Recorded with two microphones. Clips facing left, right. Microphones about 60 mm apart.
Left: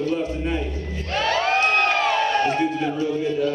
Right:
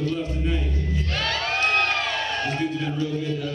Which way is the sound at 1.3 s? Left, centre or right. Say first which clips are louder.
Left 4 dB; centre.